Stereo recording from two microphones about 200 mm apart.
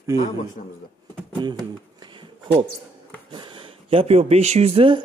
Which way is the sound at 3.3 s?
25° right (ahead or behind).